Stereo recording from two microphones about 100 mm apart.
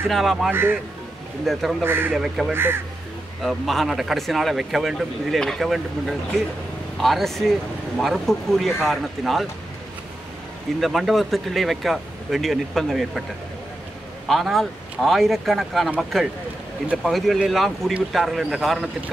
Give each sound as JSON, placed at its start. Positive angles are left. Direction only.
{"t": 0.1, "sound": "speech", "side_deg": 0}
{"t": 0.5, "sound": "speech", "side_deg": -20}
{"t": 1.4, "sound": "speech", "side_deg": 0}
{"t": 1.8, "sound": "speech", "side_deg": -20}
{"t": 2.1, "sound": "speech", "side_deg": -5}
{"t": 2.5, "sound": "speech", "side_deg": -20}
{"t": 3.4, "sound": "speech", "side_deg": 0}
{"t": 10.8, "sound": "speech", "side_deg": 0}
{"t": 14.2, "sound": "speech", "side_deg": 0}